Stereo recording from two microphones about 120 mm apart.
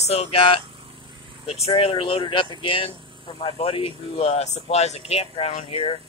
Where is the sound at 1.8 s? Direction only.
45° left (ahead or behind); by 5.7 s 65° left (ahead or behind).